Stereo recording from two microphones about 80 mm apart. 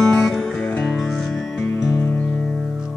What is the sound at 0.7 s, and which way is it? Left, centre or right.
Music, left.